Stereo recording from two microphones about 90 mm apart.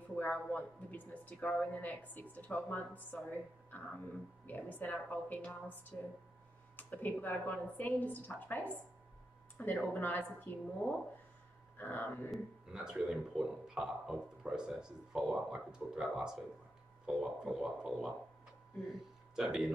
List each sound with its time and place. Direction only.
0.1 s a woman's voice: 15° left (ahead or behind)
9.8 s a woman's voice: 20° left (ahead or behind)
12.7 s a man's voice: 10° right (ahead or behind)
19.3 s a man's voice: 5° right (ahead or behind)